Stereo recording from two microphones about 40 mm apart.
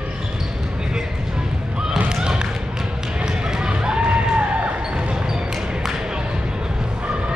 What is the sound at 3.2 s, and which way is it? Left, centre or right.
Run, right.